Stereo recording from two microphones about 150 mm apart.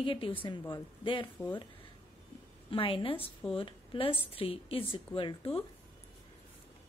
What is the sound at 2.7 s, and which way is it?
Speech, 35° left (ahead or behind).